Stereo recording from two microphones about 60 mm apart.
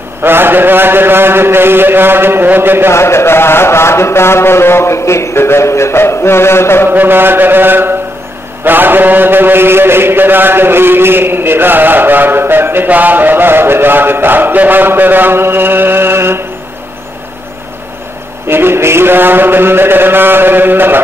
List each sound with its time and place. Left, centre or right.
0.2 s a sound: right
2.9 s mantra: left
6.9 s mantra: right
18.5 s mantra: right